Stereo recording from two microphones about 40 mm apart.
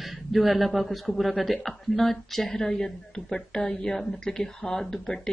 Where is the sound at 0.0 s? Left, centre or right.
Centre.